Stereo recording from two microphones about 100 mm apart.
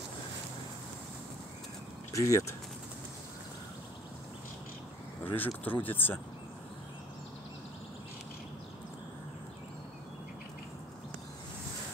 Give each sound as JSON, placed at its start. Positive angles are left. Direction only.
{"t": 2.1, "sound": "speech", "side_deg": 30}
{"t": 5.2, "sound": "speech", "side_deg": 20}